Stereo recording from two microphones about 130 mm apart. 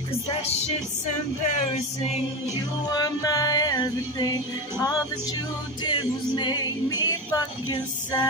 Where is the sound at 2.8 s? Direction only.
30° left (ahead or behind).